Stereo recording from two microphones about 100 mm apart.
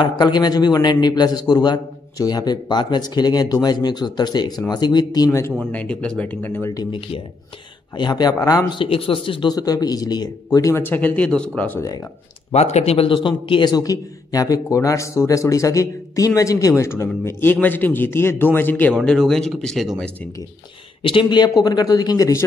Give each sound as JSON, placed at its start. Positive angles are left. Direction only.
{"t": 0.2, "sound": "a man's voice", "side_deg": 45}
{"t": 5.7, "sound": "speech", "side_deg": 10}
{"t": 8.0, "sound": "a man's voice", "side_deg": 45}
{"t": 8.7, "sound": "speech", "side_deg": 65}
{"t": 9.5, "sound": "speech", "side_deg": 40}
{"t": 10.8, "sound": "speech", "side_deg": 20}
{"t": 12.5, "sound": "a man's voice", "side_deg": 90}
{"t": 21.0, "sound": "speech", "side_deg": 55}